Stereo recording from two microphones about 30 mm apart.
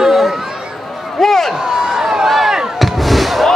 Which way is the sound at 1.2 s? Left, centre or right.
Centre.